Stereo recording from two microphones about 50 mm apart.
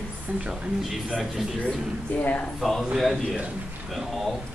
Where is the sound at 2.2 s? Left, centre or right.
Left.